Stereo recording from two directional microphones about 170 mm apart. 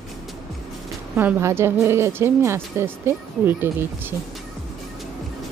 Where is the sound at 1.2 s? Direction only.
15° right (ahead or behind).